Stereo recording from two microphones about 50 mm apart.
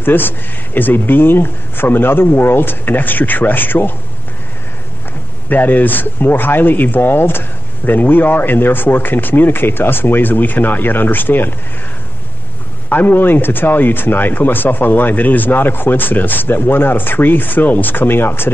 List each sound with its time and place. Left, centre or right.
0.0 s speech: left
5.5 s speech: left
12.9 s speech: left